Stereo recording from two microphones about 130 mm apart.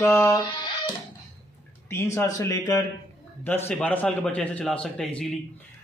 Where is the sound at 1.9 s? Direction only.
20° left (ahead or behind).